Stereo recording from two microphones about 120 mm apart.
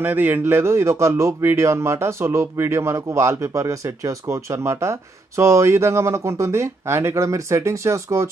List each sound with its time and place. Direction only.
0.0 s speech: 15° right (ahead or behind)